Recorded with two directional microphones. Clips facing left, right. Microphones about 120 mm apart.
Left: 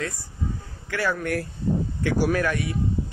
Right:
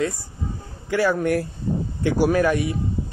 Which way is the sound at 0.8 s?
10° right (ahead or behind).